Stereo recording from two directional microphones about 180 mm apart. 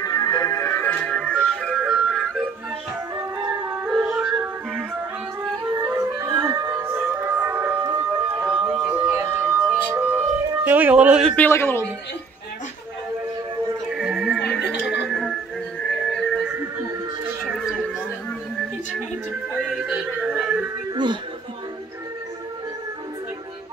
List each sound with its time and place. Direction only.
0.0 s music: 20° left (ahead or behind); by 2.4 s 5° left (ahead or behind)
3.9 s music: centre (ahead or behind)
5.6 s music: 20° right (ahead or behind)
8.2 s a sound: 30° right (ahead or behind)
8.6 s a sound: 5° right (ahead or behind)
11.3 s a man's voice: 10° left (ahead or behind)
13.8 s music: centre (ahead or behind)
19.6 s music: 5° right (ahead or behind)
20.9 s music: 25° right (ahead or behind)